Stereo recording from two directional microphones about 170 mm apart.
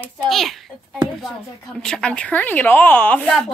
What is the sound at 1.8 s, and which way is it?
A woman's voice, 5° left (ahead or behind).